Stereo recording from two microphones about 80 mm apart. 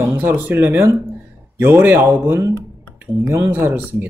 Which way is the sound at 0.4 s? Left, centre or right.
Right.